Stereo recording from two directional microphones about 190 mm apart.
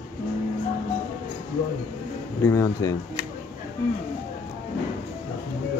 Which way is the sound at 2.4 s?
15° left (ahead or behind).